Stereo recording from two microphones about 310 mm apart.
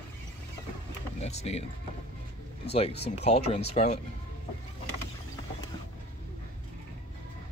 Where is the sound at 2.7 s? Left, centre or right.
Centre.